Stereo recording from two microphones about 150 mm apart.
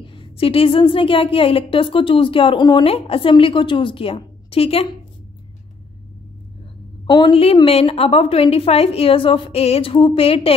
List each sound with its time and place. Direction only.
0.0 s a woman's voice: 35° left (ahead or behind)
7.1 s a woman's voice: 30° left (ahead or behind)